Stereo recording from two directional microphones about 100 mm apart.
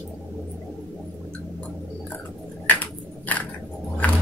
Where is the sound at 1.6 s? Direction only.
15° left (ahead or behind).